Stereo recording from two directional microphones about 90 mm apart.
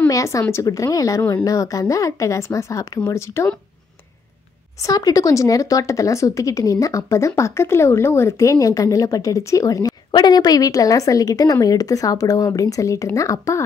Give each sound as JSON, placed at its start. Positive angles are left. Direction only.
{"t": 0.1, "sound": "speech", "side_deg": 35}
{"t": 4.8, "sound": "speech", "side_deg": 40}
{"t": 10.1, "sound": "a woman's voice", "side_deg": 50}